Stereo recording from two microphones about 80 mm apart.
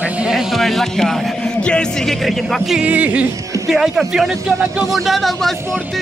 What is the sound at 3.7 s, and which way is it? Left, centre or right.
Speech, centre.